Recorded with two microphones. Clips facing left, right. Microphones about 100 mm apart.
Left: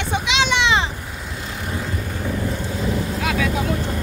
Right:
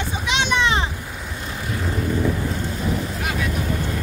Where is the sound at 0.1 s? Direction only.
90° left.